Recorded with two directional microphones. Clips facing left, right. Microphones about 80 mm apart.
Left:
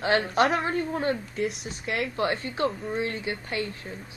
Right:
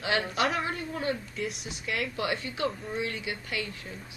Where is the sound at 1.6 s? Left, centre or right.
Left.